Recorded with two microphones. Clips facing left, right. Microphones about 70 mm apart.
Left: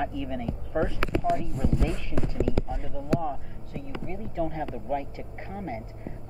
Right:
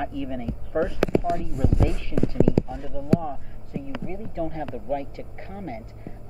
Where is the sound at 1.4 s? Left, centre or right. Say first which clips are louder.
Right 3 dB; centre.